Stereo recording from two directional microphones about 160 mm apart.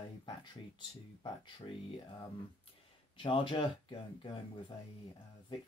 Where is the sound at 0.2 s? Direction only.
30° left (ahead or behind).